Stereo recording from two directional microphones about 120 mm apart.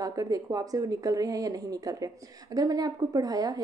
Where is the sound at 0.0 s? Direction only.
30° right (ahead or behind).